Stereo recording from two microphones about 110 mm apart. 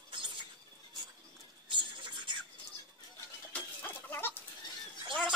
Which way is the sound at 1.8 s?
45° right (ahead or behind).